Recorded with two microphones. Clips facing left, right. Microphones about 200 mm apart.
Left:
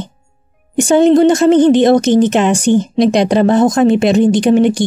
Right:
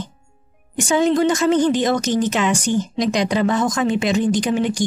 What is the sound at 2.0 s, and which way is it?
Speech, 60° left (ahead or behind).